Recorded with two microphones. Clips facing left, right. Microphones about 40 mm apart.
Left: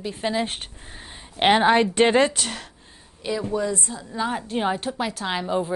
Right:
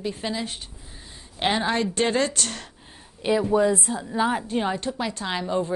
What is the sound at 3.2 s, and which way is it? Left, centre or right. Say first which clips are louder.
A woman's voice: right 5 dB; right.